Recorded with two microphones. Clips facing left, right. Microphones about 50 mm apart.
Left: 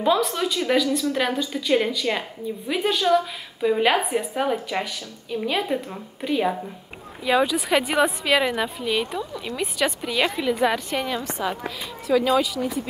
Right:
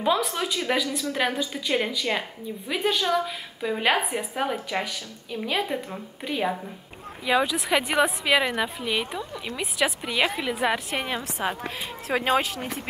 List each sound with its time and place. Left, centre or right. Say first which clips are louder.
0.0 s a woman's voice: left 3 dB; centre
10.9 s a woman's voice: left 3 dB; right